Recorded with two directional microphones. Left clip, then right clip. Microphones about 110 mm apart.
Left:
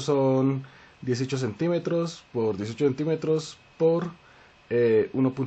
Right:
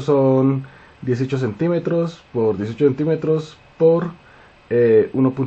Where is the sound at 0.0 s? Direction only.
45° left (ahead or behind).